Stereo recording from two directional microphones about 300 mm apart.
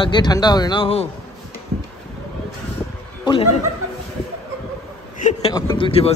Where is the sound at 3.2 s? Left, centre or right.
Centre.